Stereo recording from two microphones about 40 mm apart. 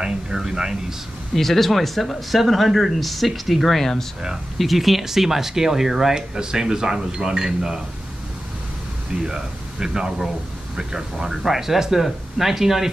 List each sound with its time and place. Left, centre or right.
0.0 s speech: centre
1.3 s speech: centre
9.1 s speech: centre